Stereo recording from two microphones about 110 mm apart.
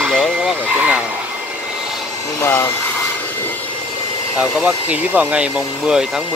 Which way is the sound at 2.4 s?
20° left (ahead or behind).